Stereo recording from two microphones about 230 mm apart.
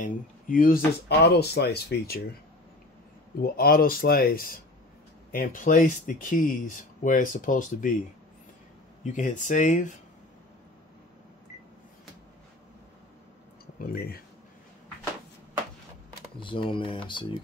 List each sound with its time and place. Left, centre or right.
0.0 s speech: left
3.3 s speech: left
9.0 s speech: left
13.7 s speech: left
16.3 s speech: left